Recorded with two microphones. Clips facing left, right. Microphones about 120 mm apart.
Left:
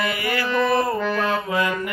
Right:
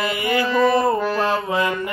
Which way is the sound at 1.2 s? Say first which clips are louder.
Right 2 dB; 25° right (ahead or behind).